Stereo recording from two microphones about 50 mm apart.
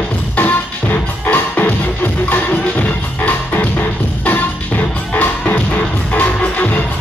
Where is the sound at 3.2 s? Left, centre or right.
Left.